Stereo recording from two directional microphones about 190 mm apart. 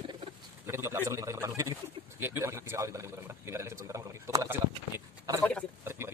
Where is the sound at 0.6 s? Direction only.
15° right (ahead or behind).